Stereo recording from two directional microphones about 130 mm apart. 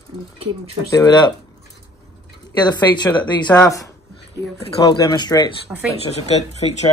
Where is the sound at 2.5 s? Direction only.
35° left (ahead or behind).